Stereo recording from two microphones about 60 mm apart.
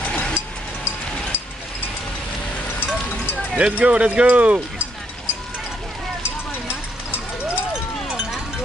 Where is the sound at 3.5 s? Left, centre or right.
Centre.